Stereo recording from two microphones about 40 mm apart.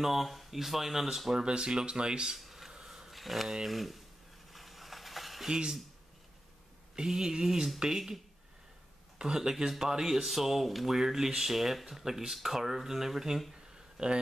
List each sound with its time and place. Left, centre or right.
0.0 s speech: centre
1.3 s speech: right
2.3 s a sound: centre
3.6 s speech: centre
4.5 s a sound: centre
7.0 s speech: centre
7.9 s speech: centre
9.2 s speech: centre
13.9 s speech: right